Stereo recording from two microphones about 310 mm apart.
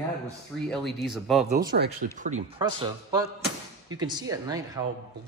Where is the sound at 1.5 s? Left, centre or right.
Right.